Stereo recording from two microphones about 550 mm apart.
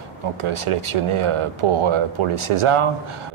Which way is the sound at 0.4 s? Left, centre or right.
Right.